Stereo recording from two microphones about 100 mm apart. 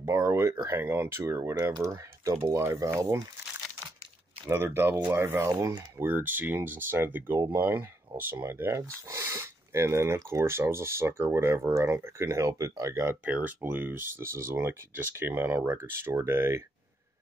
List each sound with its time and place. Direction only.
0.0 s speech: 30° right (ahead or behind)
4.5 s speech: 25° right (ahead or behind)
5.5 s speech: 35° right (ahead or behind)
5.9 s speech: 20° right (ahead or behind)
13.2 s speech: 15° right (ahead or behind)